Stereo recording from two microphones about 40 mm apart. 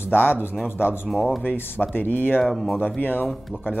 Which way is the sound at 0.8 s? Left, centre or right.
Left.